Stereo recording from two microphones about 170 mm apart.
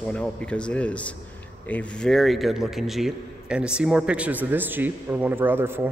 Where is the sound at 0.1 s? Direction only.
5° left (ahead or behind).